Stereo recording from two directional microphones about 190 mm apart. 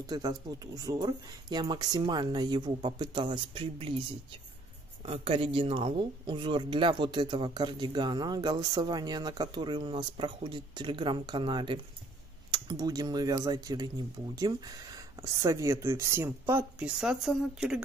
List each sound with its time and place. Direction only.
0.0 s speech: 20° right (ahead or behind)
5.0 s speech: 30° right (ahead or behind); by 17.8 s 5° right (ahead or behind)